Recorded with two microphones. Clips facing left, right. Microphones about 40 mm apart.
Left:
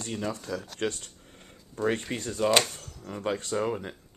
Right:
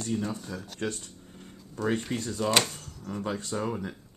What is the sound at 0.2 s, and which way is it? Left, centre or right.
Speech, left.